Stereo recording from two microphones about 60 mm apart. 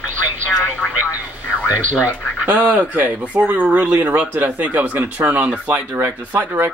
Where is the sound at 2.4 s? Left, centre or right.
Right.